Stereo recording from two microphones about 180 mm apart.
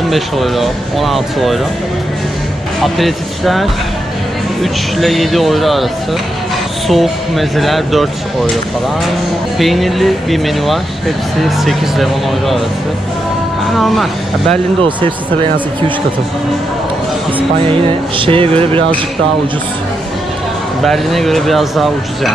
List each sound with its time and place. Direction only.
0.1 s speech: centre (ahead or behind)
2.8 s speech: centre (ahead or behind)
4.9 s speech: centre (ahead or behind)
6.9 s speech: centre (ahead or behind)
9.6 s speech: centre (ahead or behind)
13.7 s speech: centre (ahead or behind)
14.8 s a man's voice: 25° right (ahead or behind)
17.6 s music: 30° right (ahead or behind)
20.8 s speech: centre (ahead or behind)